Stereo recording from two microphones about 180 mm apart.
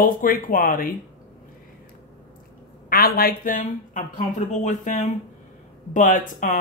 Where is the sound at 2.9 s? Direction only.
55° left (ahead or behind).